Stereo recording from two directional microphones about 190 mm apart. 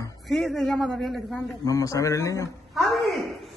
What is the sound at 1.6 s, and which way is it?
Speech, 20° left (ahead or behind).